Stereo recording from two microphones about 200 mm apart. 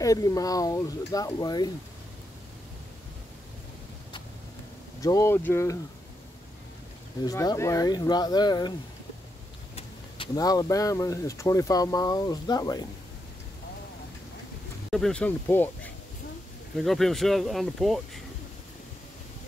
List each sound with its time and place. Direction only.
0.0 s speech: 15° left (ahead or behind)
5.0 s speech: 15° left (ahead or behind)
7.2 s speech: 15° left (ahead or behind)
9.8 s speech: 25° left (ahead or behind)
14.9 s speech: centre (ahead or behind)
16.7 s speech: centre (ahead or behind)